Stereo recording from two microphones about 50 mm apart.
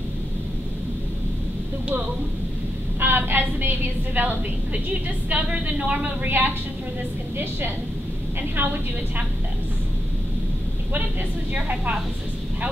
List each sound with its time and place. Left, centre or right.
3.0 s a woman's voice: right
11.5 s a woman's voice: right